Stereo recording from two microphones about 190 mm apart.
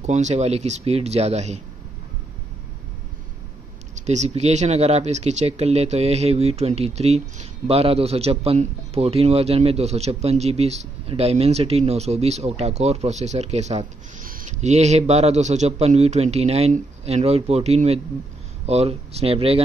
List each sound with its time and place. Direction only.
0.0 s speech: 35° right (ahead or behind)
3.9 s speech: 40° right (ahead or behind)